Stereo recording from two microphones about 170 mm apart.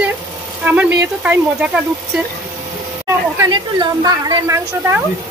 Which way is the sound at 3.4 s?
25° right (ahead or behind).